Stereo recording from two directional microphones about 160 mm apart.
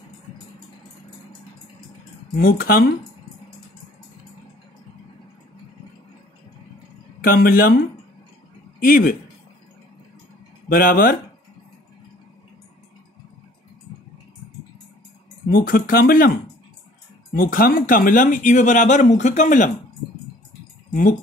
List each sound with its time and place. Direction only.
2.3 s speech: 70° left (ahead or behind)
7.2 s speech: 65° left (ahead or behind)
8.8 s speech: 60° left (ahead or behind)
10.7 s speech: 65° left (ahead or behind)
15.5 s speech: 65° left (ahead or behind)
20.9 s speech: 55° left (ahead or behind)